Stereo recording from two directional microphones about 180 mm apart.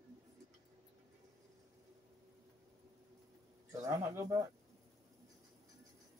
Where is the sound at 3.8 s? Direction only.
15° right (ahead or behind).